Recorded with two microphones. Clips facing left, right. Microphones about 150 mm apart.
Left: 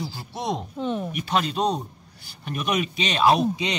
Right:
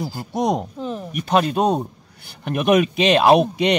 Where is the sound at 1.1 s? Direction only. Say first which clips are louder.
Right 11 dB; 45° right (ahead or behind).